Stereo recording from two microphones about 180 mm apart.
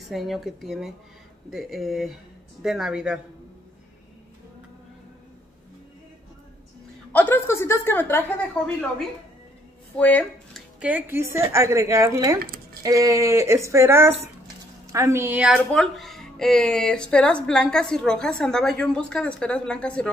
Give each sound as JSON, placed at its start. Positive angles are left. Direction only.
{"t": 0.0, "sound": "speech", "side_deg": 0}
{"t": 7.1, "sound": "a sound", "side_deg": 10}
{"t": 9.9, "sound": "speech", "side_deg": 10}
{"t": 10.8, "sound": "a woman's voice", "side_deg": -10}